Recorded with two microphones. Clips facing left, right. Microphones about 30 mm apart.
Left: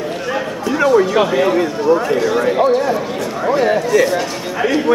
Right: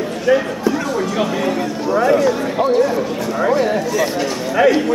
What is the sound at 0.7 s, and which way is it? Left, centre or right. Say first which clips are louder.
A man's voice: left 7 dB; centre.